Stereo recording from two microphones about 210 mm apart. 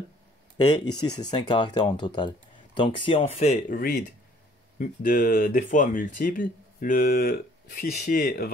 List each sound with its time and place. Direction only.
0.6 s speech: 20° left (ahead or behind); by 8.5 s 40° left (ahead or behind)